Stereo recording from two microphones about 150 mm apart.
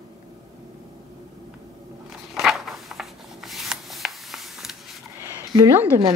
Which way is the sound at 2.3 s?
Centre (ahead or behind).